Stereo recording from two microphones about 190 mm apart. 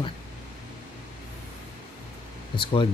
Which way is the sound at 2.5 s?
25° left (ahead or behind).